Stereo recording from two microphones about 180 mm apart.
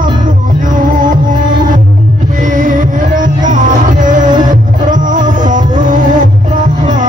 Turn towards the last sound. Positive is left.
turn(degrees=-45)  # may be behind; listen again after turning